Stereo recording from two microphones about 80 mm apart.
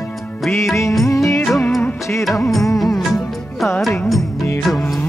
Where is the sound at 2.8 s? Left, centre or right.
Centre.